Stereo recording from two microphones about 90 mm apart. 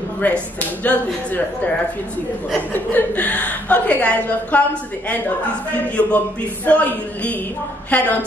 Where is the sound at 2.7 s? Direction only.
20° left (ahead or behind).